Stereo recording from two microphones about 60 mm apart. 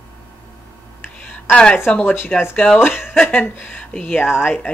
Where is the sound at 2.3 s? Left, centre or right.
Left.